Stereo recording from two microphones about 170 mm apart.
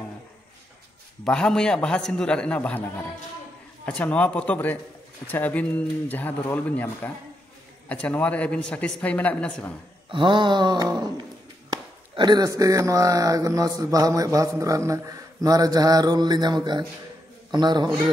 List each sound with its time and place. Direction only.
1.2 s a man's voice: 5° left (ahead or behind)
10.0 s a man's voice: 30° right (ahead or behind)